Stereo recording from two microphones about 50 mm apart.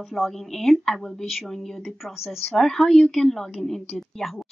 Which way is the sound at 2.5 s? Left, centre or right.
Centre.